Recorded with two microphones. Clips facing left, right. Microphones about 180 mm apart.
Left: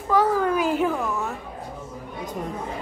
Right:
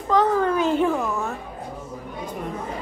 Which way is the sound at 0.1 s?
10° left (ahead or behind).